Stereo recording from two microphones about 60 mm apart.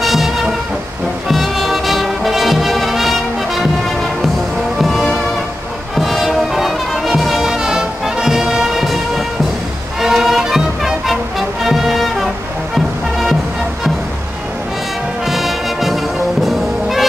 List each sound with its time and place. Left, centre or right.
0.0 s music: centre
1.3 s music: centre
4.7 s music: centre
15.2 s brass instrument: centre
16.4 s music: centre